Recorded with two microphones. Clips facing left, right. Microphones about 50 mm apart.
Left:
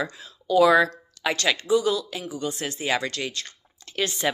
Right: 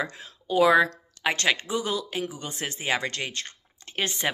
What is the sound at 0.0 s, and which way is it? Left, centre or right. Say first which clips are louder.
A woman's voice: left 1 dB; right.